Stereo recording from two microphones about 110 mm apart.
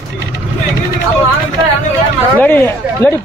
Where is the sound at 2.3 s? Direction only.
15° left (ahead or behind).